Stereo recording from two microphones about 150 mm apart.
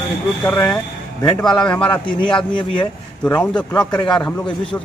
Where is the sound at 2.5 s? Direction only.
35° left (ahead or behind).